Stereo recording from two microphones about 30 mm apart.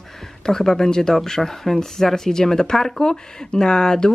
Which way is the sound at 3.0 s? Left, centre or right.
Left.